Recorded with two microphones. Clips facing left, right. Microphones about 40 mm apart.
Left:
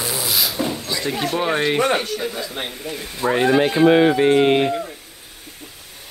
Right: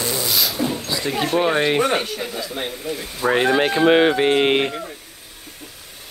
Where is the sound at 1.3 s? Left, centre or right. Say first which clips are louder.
Right 2 dB; centre.